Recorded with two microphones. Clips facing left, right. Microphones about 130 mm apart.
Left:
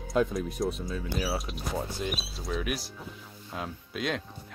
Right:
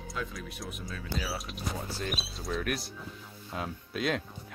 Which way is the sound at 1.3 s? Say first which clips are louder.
Left 4 dB; centre (ahead or behind).